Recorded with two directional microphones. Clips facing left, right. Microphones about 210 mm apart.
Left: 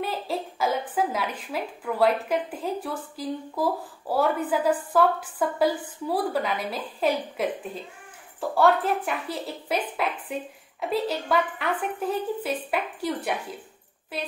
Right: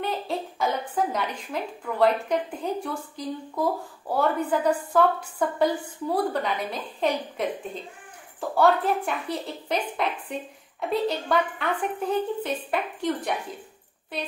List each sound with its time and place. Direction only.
0.0 s a woman's voice: 5° left (ahead or behind)